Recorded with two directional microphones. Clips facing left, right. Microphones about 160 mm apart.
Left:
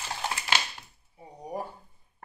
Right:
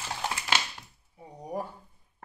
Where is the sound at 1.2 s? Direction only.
5° left (ahead or behind).